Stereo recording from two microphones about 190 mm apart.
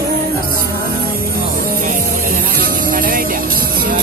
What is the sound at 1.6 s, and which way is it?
Music, 50° right (ahead or behind).